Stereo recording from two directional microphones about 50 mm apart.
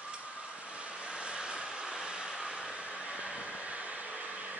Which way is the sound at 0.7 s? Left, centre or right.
Right.